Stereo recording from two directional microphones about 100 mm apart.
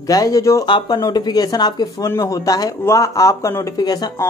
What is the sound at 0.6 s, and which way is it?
Speech, 50° left (ahead or behind).